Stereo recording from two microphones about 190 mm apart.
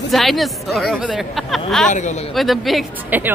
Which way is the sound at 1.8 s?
40° left (ahead or behind).